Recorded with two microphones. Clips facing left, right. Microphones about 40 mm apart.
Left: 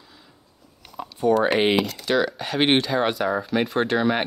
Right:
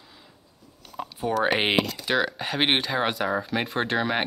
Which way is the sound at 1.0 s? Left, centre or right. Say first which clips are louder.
Left 7 dB; centre.